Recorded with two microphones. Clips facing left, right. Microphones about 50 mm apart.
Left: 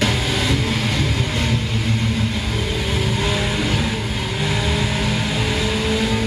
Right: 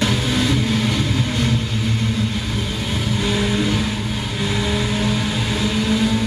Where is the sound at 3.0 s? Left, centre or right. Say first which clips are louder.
Right 1 dB; left.